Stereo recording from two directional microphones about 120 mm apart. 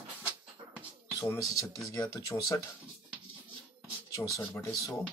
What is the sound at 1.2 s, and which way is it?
Speech, 25° left (ahead or behind).